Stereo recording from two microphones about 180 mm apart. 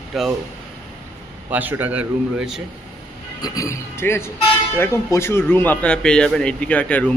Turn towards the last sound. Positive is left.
turn(degrees=5)  # may be behind; listen again after turning